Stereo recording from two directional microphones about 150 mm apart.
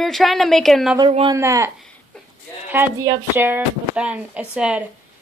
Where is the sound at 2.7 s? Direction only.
15° right (ahead or behind).